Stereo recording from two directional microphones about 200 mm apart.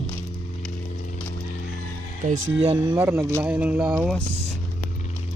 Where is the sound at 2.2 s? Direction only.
30° right (ahead or behind).